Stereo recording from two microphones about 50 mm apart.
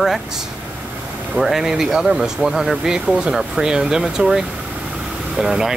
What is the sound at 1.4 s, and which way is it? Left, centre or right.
Speech, centre.